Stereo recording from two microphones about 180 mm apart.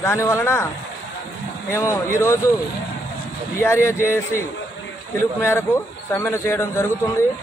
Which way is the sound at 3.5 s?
15° left (ahead or behind).